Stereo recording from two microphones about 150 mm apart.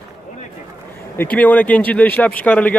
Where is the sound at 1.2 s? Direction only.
10° left (ahead or behind).